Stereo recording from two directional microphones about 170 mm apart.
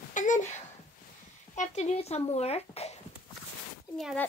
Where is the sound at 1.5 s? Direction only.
45° left (ahead or behind).